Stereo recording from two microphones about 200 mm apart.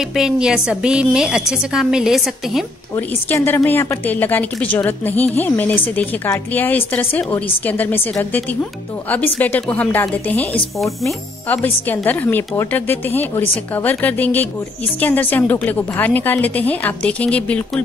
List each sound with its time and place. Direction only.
0.1 s a woman's voice: 5° right (ahead or behind)
3.3 s a woman's voice: 10° left (ahead or behind)